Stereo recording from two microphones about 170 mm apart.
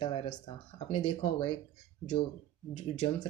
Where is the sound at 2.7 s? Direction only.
30° left (ahead or behind).